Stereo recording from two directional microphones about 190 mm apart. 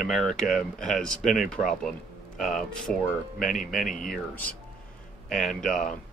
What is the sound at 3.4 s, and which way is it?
Speech, 45° left (ahead or behind).